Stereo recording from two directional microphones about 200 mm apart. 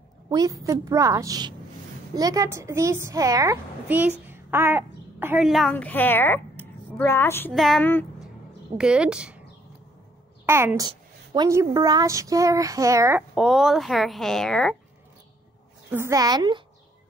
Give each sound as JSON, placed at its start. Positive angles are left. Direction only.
{"t": 0.3, "sound": "a woman's voice", "side_deg": -15}
{"t": 8.7, "sound": "speech", "side_deg": -5}
{"t": 10.4, "sound": "a woman's voice", "side_deg": -10}
{"t": 13.3, "sound": "speech", "side_deg": 0}
{"t": 15.9, "sound": "a woman's voice", "side_deg": -15}